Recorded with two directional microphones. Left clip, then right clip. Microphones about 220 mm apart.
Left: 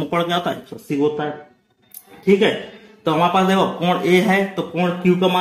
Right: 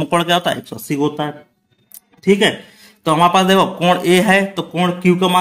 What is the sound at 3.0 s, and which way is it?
Speech, 40° right (ahead or behind).